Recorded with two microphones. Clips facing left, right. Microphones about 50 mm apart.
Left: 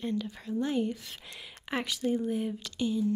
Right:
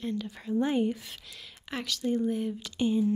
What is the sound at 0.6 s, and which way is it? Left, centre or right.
Speech, centre.